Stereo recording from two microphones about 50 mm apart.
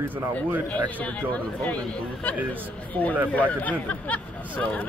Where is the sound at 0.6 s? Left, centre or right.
Left.